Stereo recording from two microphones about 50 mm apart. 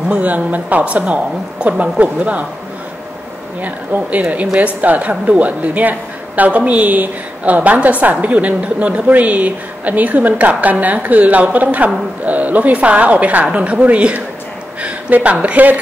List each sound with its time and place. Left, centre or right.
0.1 s a woman's voice: right
3.6 s a woman's voice: right
14.8 s a sound: right
15.4 s a woman's voice: right